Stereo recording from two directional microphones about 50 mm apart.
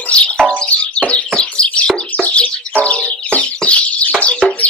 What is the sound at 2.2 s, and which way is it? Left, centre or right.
Music, left.